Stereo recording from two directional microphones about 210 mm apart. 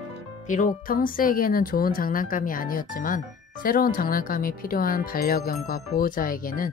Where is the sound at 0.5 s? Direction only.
40° left (ahead or behind).